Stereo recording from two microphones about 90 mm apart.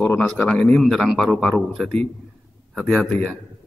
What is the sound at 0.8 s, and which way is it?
Speech, centre (ahead or behind).